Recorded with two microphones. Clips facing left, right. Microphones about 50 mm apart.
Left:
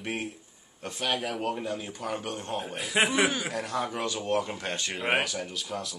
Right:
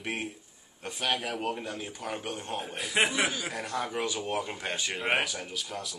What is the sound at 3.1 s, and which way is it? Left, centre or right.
Speech, left.